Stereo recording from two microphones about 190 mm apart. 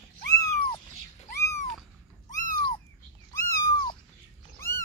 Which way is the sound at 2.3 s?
45° left (ahead or behind).